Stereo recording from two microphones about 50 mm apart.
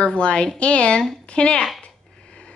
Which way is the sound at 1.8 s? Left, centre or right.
Left.